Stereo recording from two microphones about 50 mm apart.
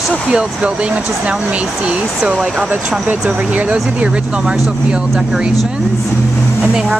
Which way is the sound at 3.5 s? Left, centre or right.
Right.